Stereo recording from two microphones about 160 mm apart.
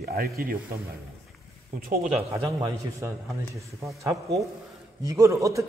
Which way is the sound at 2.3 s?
20° right (ahead or behind).